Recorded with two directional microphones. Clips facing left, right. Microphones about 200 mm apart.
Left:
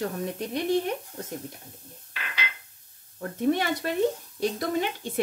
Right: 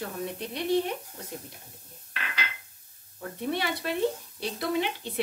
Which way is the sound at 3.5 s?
45° left (ahead or behind).